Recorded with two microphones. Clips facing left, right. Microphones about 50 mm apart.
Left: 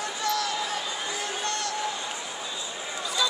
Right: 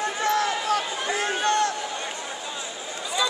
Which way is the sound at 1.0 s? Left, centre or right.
Right.